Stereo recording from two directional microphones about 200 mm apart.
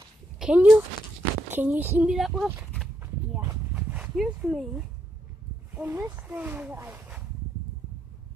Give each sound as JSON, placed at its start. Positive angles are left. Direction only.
{"t": 0.4, "sound": "speech", "side_deg": -5}
{"t": 3.0, "sound": "a sound", "side_deg": -10}
{"t": 5.8, "sound": "speech", "side_deg": -10}